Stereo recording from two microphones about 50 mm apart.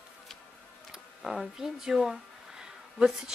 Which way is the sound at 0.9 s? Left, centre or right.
Centre.